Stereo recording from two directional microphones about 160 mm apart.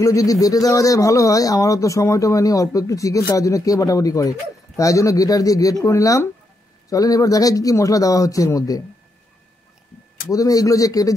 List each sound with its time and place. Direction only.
0.0 s speech: 20° left (ahead or behind)
10.2 s speech: 20° left (ahead or behind)